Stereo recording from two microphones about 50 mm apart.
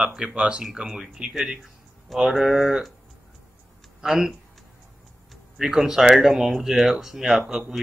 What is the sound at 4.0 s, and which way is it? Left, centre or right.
Speech, centre.